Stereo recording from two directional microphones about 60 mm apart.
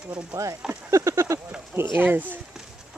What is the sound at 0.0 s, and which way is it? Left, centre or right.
Speech, centre.